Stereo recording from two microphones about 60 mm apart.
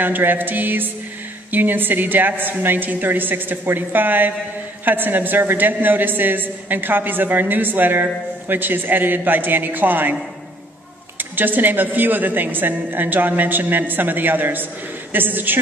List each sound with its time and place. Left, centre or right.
0.0 s a man's voice: right
11.1 s a man's voice: right